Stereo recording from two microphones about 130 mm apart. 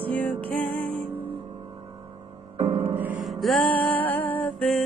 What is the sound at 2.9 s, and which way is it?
Music, 15° right (ahead or behind).